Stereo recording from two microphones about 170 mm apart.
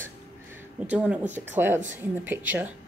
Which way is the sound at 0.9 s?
5° right (ahead or behind).